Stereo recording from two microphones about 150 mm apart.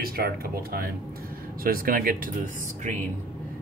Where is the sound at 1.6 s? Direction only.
75° right (ahead or behind).